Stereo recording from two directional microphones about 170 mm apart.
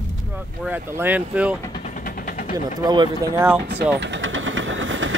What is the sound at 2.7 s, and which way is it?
Speech, 25° right (ahead or behind).